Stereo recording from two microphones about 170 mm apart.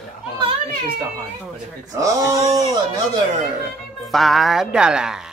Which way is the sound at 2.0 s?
20° right (ahead or behind).